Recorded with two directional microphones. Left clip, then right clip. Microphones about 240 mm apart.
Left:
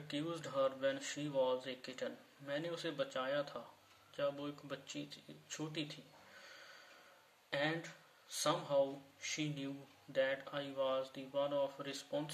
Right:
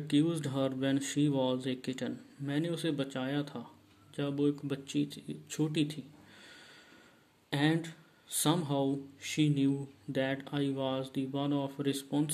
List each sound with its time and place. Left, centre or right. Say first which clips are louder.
0.1 s speech: right 10 dB; right
7.4 s speech: right 7 dB; right